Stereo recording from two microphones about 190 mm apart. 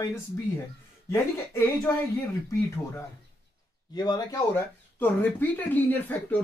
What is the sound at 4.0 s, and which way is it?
Speech, 20° left (ahead or behind).